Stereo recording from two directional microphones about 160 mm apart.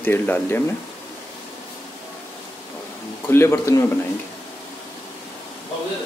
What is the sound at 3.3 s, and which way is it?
Speech, 15° left (ahead or behind).